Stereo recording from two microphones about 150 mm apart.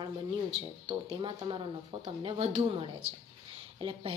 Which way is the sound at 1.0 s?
30° right (ahead or behind).